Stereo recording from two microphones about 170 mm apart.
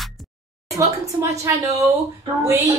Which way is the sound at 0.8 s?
15° right (ahead or behind).